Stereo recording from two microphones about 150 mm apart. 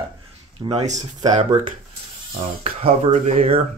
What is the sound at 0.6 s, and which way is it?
Speech, 30° right (ahead or behind).